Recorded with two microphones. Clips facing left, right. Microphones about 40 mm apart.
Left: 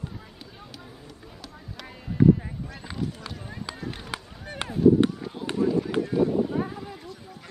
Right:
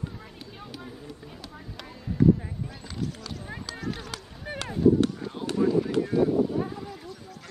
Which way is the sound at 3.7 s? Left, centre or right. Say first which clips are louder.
Even; centre.